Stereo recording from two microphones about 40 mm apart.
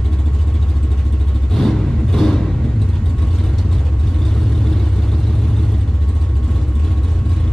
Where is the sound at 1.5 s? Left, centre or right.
Centre.